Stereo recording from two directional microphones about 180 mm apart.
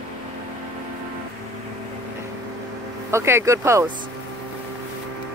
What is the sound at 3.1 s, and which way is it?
Speech, 15° right (ahead or behind).